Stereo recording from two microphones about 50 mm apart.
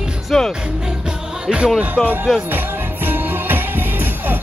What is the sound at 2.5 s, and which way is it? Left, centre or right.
Music, right.